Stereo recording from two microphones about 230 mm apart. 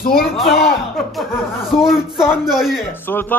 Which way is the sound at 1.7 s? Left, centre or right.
Centre.